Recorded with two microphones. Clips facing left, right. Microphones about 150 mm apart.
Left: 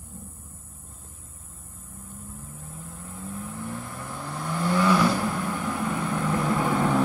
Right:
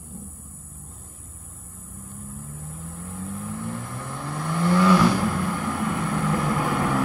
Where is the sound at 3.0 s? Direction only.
15° left (ahead or behind).